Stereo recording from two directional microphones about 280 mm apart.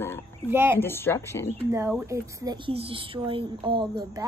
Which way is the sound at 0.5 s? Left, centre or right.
Centre.